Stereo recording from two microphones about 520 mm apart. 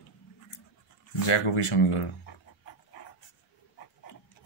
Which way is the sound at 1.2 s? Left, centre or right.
Left.